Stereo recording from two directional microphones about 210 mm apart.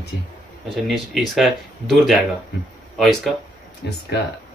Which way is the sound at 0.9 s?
Centre (ahead or behind).